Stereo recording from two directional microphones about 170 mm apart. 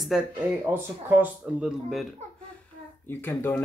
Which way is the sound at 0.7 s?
10° right (ahead or behind).